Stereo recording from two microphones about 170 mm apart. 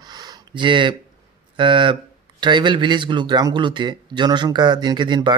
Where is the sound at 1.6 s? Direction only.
30° right (ahead or behind).